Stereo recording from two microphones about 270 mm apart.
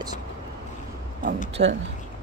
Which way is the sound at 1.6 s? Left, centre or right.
Right.